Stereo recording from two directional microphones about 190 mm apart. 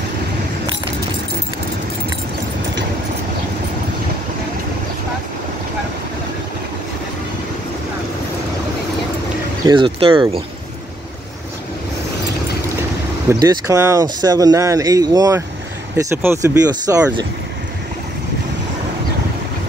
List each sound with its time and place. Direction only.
9.7 s speech: 25° right (ahead or behind)
13.3 s speech: 20° right (ahead or behind)